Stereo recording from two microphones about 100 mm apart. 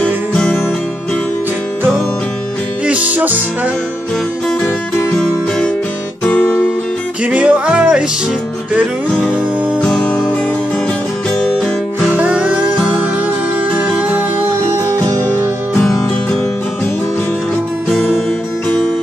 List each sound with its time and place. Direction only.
0.0 s music: 10° left (ahead or behind)
2.9 s music: 15° right (ahead or behind)
5.1 s music: 10° left (ahead or behind)
6.2 s guitar: 10° left (ahead or behind)
7.2 s music: 10° right (ahead or behind)
9.8 s music: 10° left (ahead or behind)
12.2 s music: 10° right (ahead or behind)
13.9 s music: 15° right (ahead or behind)
15.8 s music: 5° left (ahead or behind)